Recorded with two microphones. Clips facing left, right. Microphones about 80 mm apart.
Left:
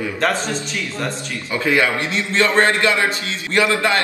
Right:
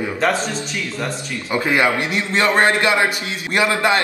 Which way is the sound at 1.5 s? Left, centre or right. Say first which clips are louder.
Right 1 dB; right.